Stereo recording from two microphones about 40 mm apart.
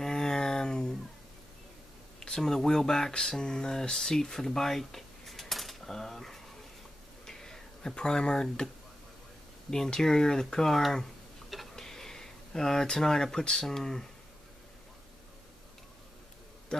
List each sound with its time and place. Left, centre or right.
0.0 s a sound: centre
2.1 s speech: centre
7.2 s tick-tock: centre
9.7 s speech: centre